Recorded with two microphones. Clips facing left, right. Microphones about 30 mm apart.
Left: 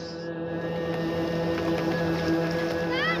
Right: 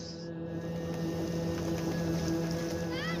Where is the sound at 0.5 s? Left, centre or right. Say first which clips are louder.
Left 8 dB; left.